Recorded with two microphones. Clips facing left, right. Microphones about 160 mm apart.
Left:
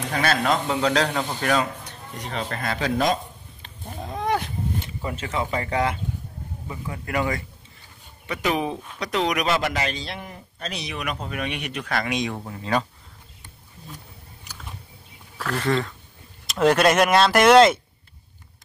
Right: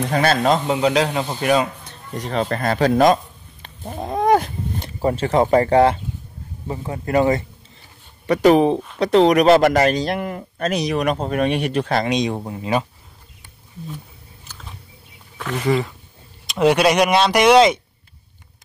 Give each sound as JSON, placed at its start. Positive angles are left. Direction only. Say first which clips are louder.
{"t": 0.1, "sound": "speech", "louder": "right 5 dB", "side_deg": -35}
{"t": 0.7, "sound": "speech", "louder": "right 4 dB", "side_deg": -15}
{"t": 2.2, "sound": "a man's voice", "louder": "right 8 dB", "side_deg": -40}
{"t": 3.6, "sound": "a sound", "louder": "right 7 dB", "side_deg": -65}
{"t": 4.2, "sound": "a sound", "louder": "right 8 dB", "side_deg": -45}
{"t": 6.7, "sound": "a man's voice", "louder": "right 8 dB", "side_deg": -30}
{"t": 10.7, "sound": "speech", "louder": "right 11 dB", "side_deg": -40}
{"t": 15.3, "sound": "speech", "louder": "right 3 dB", "side_deg": -5}